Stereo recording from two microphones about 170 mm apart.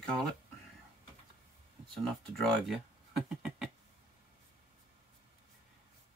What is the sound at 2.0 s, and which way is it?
Speech, centre (ahead or behind).